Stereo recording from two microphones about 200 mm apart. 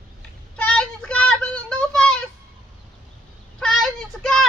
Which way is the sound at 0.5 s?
5° left (ahead or behind).